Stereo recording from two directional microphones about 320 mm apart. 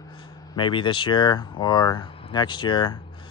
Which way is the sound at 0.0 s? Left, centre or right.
Centre.